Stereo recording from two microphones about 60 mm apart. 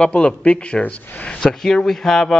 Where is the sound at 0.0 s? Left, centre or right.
Centre.